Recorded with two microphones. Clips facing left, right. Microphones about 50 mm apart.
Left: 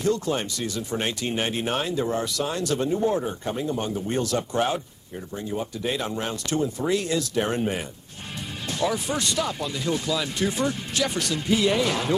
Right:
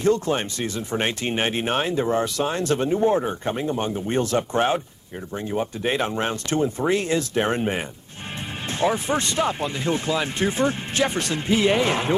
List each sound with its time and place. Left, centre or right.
0.0 s speech: right